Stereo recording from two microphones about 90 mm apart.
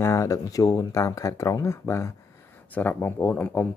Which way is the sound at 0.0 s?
35° left (ahead or behind).